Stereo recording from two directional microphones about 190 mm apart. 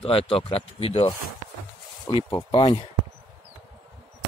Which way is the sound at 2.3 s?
20° left (ahead or behind).